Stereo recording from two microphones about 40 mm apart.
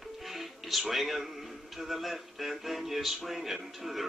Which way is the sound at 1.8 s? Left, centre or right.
Centre.